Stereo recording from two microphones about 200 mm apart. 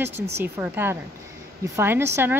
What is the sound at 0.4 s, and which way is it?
Speech, 10° right (ahead or behind).